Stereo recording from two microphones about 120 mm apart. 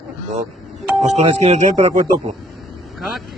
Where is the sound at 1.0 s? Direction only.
65° right (ahead or behind).